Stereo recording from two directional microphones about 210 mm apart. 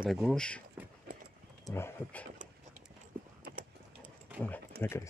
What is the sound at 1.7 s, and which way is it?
Speech, 10° left (ahead or behind).